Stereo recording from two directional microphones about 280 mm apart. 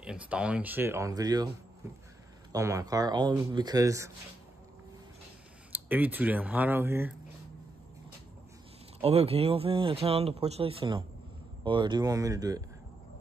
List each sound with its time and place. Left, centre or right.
0.0 s speech: centre
2.5 s speech: centre
5.7 s speech: centre
9.0 s speech: right